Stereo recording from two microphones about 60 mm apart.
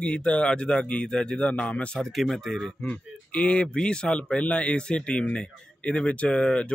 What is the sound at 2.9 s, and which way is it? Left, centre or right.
Speech, left.